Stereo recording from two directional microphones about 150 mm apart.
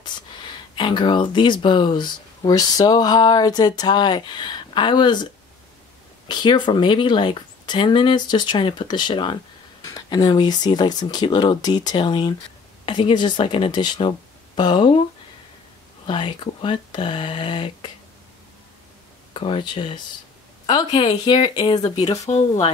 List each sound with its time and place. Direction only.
0.0 s speech: 30° left (ahead or behind)
16.1 s speech: 30° left (ahead or behind)
19.3 s a woman's voice: 35° left (ahead or behind)